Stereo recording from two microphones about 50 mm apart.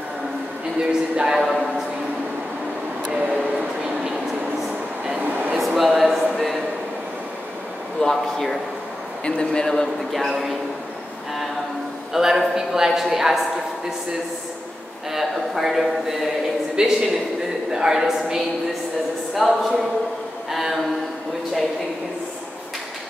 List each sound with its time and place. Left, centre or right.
1.1 s a woman's voice: centre
3.1 s a sound: centre
5.2 s air conditioning: right
5.8 s a sound: centre
8.0 s a man's voice: centre
9.2 s speech: centre
10.1 s a man's voice: centre
12.1 s a woman's voice: centre
15.1 s a man's voice: centre